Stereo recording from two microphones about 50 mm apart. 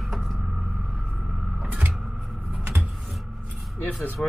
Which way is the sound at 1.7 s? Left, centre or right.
Right.